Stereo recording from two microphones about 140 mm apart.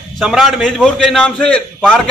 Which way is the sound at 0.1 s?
Centre (ahead or behind).